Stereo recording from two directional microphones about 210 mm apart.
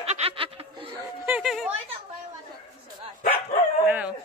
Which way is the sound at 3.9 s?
5° right (ahead or behind).